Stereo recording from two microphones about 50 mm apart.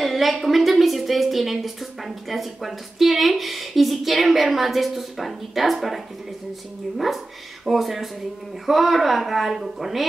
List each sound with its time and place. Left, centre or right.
0.0 s a woman's voice: centre
7.6 s a woman's voice: centre